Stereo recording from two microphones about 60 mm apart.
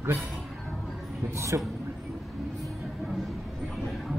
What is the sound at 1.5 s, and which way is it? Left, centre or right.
Speech, right.